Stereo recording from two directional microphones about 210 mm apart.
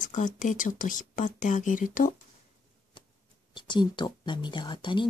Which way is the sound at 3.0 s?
25° left (ahead or behind).